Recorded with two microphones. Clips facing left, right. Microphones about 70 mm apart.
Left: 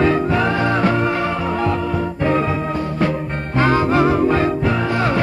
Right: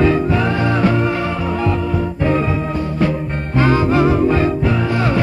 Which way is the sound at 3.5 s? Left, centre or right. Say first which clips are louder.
Right 1 dB; left.